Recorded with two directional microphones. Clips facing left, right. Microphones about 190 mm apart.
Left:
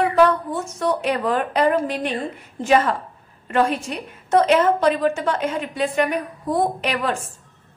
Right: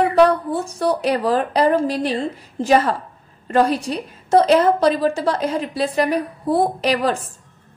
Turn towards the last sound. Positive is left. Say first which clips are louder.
# right 4 dB
turn(degrees=-35)  # may be behind; listen again after turning